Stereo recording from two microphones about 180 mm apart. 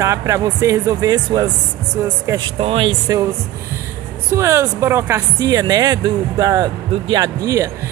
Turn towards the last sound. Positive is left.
turn(degrees=-20)  # may be behind; listen again after turning